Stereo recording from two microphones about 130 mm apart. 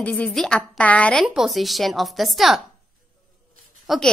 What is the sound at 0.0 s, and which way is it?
A woman's voice, 5° left (ahead or behind).